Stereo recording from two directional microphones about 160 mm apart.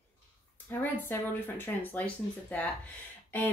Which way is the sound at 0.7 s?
15° left (ahead or behind).